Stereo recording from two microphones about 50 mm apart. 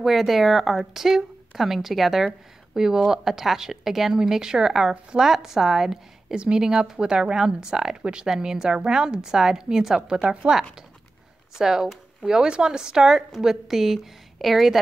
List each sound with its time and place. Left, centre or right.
0.0 s a woman's voice: centre
6.3 s a woman's voice: centre
11.5 s a woman's voice: centre